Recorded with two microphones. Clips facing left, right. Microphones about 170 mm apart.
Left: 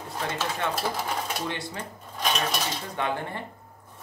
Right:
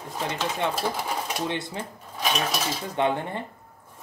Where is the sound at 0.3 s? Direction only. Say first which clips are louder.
Right 2 dB; 15° right (ahead or behind).